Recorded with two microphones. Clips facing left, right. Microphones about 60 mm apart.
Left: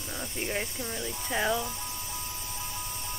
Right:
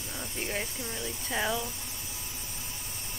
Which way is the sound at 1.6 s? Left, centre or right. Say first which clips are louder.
Left 4 dB; left.